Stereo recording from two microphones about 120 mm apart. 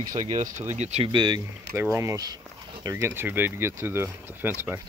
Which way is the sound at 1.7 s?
25° right (ahead or behind).